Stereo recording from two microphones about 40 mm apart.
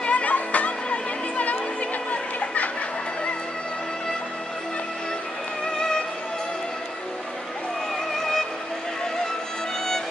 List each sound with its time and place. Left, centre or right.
0.0 s music: left
5.8 s music: centre
8.1 s music: centre